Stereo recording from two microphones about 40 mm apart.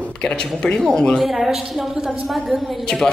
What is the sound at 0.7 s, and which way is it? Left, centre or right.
Speech, centre.